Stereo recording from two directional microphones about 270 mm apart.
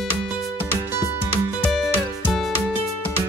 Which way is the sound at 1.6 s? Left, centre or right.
Centre.